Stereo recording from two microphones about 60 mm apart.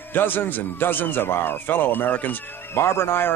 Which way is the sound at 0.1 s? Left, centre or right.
Left.